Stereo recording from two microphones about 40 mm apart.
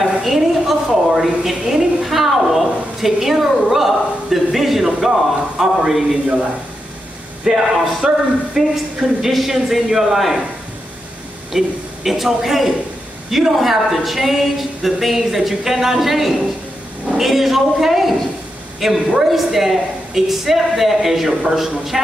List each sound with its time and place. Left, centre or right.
0.0 s a sound: centre
7.4 s a woman's voice: centre
11.5 s a woman's voice: centre